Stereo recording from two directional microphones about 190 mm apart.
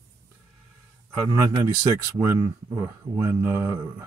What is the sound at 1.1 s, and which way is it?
Speech, 15° right (ahead or behind).